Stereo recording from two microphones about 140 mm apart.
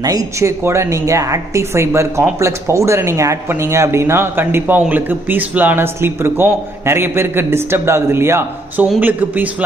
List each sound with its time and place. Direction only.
0.0 s a woman's voice: 25° right (ahead or behind)